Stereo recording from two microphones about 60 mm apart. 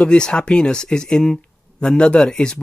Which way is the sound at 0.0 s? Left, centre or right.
Centre.